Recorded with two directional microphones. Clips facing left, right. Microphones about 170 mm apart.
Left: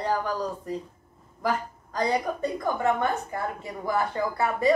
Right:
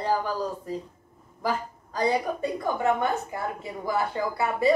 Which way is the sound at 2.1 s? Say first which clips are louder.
Even; 10° right (ahead or behind).